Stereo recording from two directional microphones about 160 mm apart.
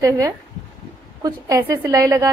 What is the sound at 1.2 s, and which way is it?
A woman's voice, 20° right (ahead or behind).